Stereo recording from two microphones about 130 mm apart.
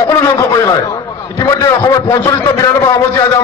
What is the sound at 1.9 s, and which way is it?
A man's voice, 30° left (ahead or behind).